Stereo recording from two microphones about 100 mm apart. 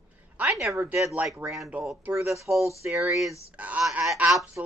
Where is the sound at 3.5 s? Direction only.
15° right (ahead or behind).